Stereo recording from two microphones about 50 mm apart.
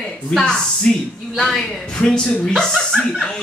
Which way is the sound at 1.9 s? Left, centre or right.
Left.